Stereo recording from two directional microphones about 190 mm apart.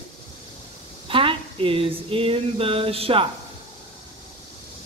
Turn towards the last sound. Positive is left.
turn(degrees=-30)  # may be behind; listen again after turning